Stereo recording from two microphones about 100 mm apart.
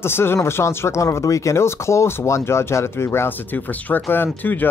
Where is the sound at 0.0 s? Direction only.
25° left (ahead or behind).